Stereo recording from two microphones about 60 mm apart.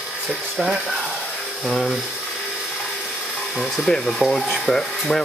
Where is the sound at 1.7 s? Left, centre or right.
Centre.